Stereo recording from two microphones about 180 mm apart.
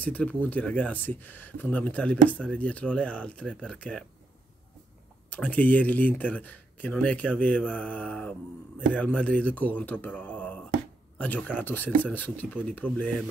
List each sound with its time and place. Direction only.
0.0 s speech: 10° left (ahead or behind)
5.3 s speech: 10° left (ahead or behind)